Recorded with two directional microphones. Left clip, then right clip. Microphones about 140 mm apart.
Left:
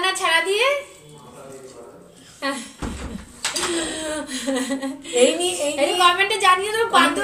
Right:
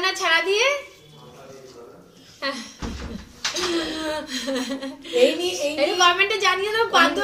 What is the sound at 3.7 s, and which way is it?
A woman's voice, 10° right (ahead or behind).